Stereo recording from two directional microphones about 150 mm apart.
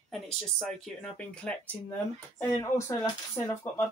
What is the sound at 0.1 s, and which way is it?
Speech, 5° left (ahead or behind).